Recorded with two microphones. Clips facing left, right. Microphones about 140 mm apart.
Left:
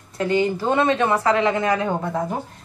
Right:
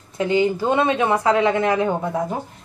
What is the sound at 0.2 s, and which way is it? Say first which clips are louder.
A woman's voice: right 1 dB; 15° right (ahead or behind).